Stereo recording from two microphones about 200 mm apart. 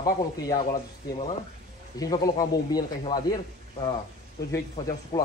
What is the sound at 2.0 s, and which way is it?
A man's voice, 20° left (ahead or behind).